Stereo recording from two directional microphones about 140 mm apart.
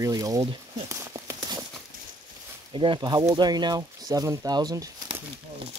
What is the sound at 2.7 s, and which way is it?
Speech, 35° right (ahead or behind).